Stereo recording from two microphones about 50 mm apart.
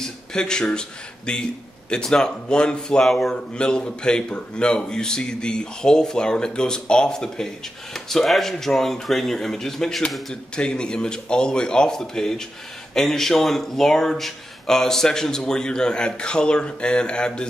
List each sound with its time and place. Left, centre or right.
0.0 s a man's voice: centre
3.1 s speech: centre
3.5 s a man's voice: centre